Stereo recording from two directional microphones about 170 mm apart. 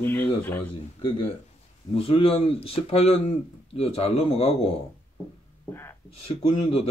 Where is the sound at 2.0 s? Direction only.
35° left (ahead or behind).